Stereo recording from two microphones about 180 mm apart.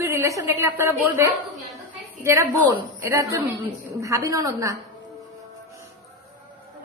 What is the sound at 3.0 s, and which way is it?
A woman's voice, 15° right (ahead or behind).